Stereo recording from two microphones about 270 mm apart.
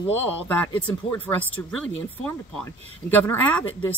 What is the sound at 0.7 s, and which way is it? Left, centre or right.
Speech, centre.